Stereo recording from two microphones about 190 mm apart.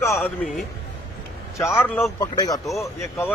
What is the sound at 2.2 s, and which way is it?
Speech, 20° left (ahead or behind).